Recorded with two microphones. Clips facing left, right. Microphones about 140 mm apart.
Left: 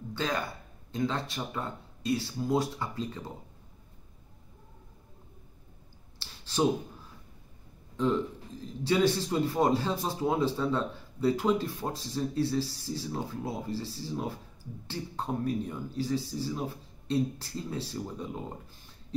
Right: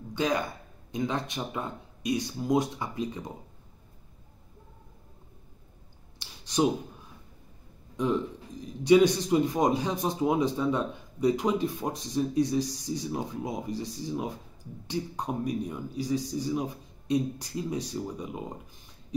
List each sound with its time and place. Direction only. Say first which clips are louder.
0.1 s a man's voice: right 4 dB; 15° right (ahead or behind)
6.1 s a sound: right 3 dB; 15° right (ahead or behind)
8.0 s a man's voice: even; 15° right (ahead or behind)